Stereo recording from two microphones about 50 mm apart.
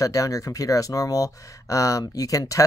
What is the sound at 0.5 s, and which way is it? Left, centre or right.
Speech, left.